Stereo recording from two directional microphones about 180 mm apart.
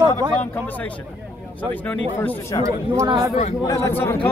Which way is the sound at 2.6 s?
20° right (ahead or behind).